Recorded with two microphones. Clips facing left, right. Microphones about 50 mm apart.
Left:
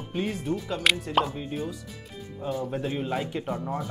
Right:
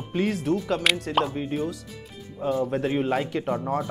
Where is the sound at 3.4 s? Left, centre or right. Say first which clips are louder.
Right 4 dB; right.